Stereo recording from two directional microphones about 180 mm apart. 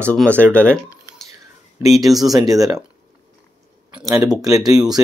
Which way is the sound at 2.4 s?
20° right (ahead or behind).